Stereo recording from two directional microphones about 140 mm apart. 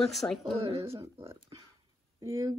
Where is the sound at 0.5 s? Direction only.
45° right (ahead or behind).